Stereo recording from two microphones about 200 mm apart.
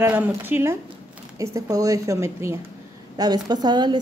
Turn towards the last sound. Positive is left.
turn(degrees=-20)  # may be behind; listen again after turning